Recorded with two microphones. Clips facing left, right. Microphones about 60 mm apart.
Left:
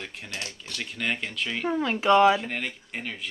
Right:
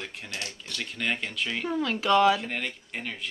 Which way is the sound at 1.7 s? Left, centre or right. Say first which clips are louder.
Left 3 dB; left.